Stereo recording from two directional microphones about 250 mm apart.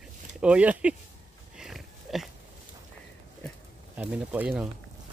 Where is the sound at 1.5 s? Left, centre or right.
Centre.